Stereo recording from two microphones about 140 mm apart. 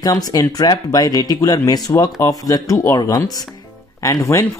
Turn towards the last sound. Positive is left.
turn(degrees=20)  # may be behind; listen again after turning